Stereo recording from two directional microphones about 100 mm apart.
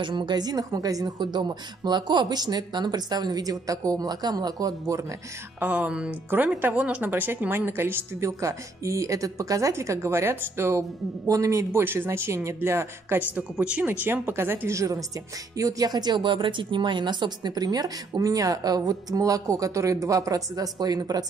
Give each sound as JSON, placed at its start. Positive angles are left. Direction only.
{"t": 0.0, "sound": "speech", "side_deg": -50}
{"t": 5.6, "sound": "speech", "side_deg": -15}
{"t": 11.8, "sound": "speech", "side_deg": -20}
{"t": 13.4, "sound": "speech", "side_deg": -10}